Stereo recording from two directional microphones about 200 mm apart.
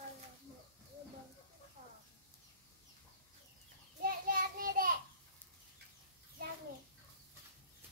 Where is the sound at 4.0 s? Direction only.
45° right (ahead or behind).